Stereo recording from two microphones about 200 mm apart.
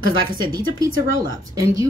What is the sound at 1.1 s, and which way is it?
Cutlery, 15° right (ahead or behind).